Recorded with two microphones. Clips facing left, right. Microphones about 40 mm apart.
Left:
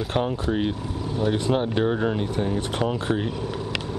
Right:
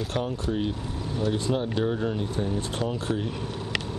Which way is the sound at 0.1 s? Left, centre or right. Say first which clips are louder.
Left 6 dB; left.